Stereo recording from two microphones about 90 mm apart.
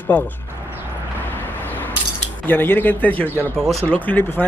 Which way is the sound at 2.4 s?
25° left (ahead or behind).